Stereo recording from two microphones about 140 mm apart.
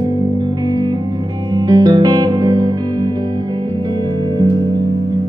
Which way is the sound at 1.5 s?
30° right (ahead or behind).